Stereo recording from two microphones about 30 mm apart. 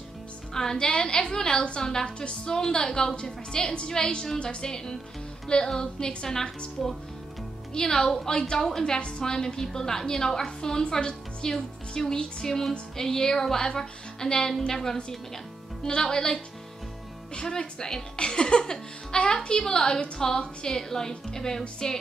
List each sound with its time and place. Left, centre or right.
0.6 s a woman's voice: left
4.4 s a woman's voice: left
6.8 s speech: centre
7.7 s a woman's voice: left
8.4 s a woman's voice: left
17.4 s a woman's voice: left